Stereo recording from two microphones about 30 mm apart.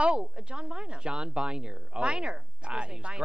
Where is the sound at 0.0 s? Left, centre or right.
Right.